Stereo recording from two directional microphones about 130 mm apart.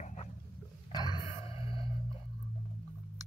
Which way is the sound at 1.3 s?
45° left (ahead or behind).